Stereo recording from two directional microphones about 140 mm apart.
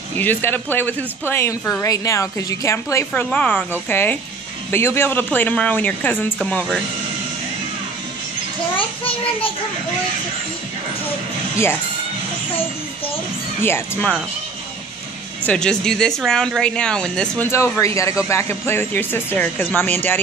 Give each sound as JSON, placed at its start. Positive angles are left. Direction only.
{"t": 0.1, "sound": "a woman's voice", "side_deg": 15}
{"t": 3.1, "sound": "speech", "side_deg": 10}
{"t": 8.7, "sound": "a child's voice", "side_deg": 40}
{"t": 13.6, "sound": "speech", "side_deg": 15}
{"t": 15.4, "sound": "speech", "side_deg": 5}
{"t": 17.5, "sound": "a woman's voice", "side_deg": 20}